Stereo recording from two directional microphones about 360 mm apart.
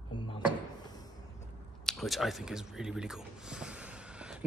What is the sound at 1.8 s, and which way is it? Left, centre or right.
Speech, centre.